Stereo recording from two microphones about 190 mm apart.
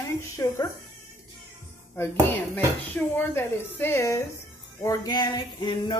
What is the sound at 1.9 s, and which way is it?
Speech, 10° left (ahead or behind).